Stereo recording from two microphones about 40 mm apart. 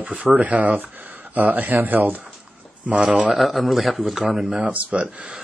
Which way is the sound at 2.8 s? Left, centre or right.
Right.